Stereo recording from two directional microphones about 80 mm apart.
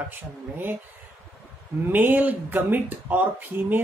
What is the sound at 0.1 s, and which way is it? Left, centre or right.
Speech, right.